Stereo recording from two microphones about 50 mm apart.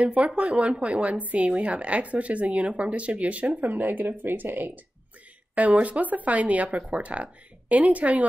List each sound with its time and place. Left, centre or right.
0.0 s speech: right
5.5 s speech: right